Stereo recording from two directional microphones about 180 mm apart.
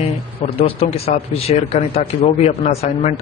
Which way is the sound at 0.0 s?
30° left (ahead or behind).